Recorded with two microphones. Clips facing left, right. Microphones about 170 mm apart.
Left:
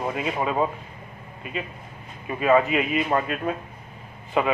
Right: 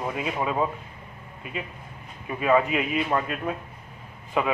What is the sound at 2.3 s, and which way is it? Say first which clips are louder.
A man's voice: left 2 dB; 5° left (ahead or behind).